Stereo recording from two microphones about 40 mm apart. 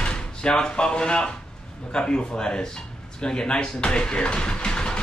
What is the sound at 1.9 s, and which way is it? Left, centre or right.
Speech, left.